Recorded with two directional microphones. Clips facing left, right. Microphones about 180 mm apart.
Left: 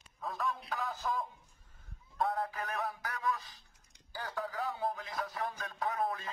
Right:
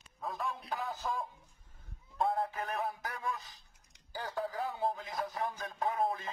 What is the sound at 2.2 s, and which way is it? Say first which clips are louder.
Speech: right 2 dB; 15° right (ahead or behind).